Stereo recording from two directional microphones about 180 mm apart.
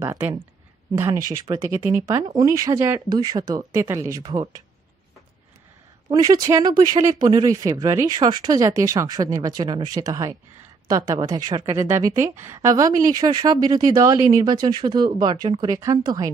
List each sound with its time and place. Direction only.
0.0 s a woman's voice: 15° right (ahead or behind)
6.0 s a woman's voice: 25° right (ahead or behind)